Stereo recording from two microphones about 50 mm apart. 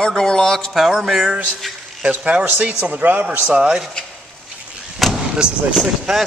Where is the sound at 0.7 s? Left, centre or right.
Centre.